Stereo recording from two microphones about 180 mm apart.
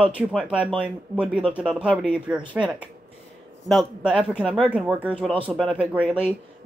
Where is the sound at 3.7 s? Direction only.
Centre (ahead or behind).